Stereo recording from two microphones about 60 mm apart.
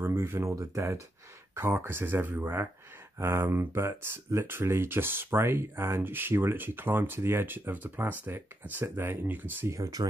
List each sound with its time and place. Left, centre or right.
0.0 s a sound: right
0.6 s speech: right
1.5 s speech: right
8.7 s speech: right
9.7 s speech: right